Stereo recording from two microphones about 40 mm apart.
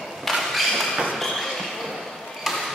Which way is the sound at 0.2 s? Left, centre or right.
Centre.